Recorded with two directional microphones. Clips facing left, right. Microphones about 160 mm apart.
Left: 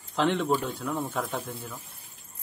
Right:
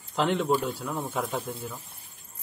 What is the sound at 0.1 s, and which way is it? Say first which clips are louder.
A man's voice: even; 5° right (ahead or behind).